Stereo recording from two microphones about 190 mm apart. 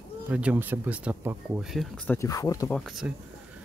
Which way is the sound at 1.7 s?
10° left (ahead or behind).